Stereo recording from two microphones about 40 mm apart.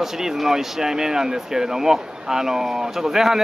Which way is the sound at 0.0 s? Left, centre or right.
Centre.